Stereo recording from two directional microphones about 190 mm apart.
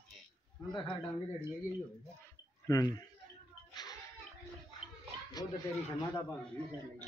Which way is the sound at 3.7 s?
20° left (ahead or behind).